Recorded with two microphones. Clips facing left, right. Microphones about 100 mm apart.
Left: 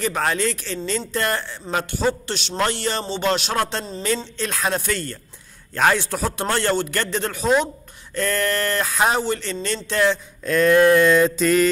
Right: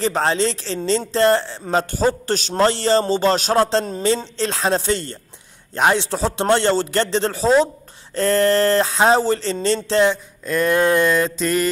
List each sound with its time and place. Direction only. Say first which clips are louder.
0.0 s speech: right 3 dB; 30° right (ahead or behind)
10.4 s speech: left 3 dB; 10° right (ahead or behind)
11.1 s music: left 3 dB; centre (ahead or behind)